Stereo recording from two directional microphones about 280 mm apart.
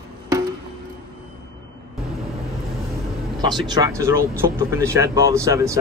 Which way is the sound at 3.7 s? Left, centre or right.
Centre.